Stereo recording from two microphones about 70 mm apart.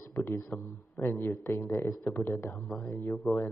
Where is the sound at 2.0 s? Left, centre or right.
Left.